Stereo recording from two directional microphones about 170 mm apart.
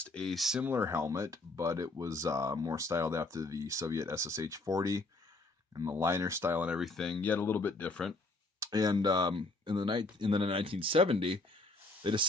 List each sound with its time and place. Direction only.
0.0 s speech: 5° left (ahead or behind)
8.5 s speech: 20° right (ahead or behind)